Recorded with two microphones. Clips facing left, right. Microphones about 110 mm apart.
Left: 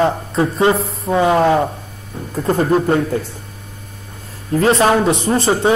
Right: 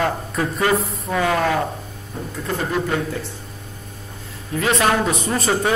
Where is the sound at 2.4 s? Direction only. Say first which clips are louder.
Left 8 dB; 40° left (ahead or behind).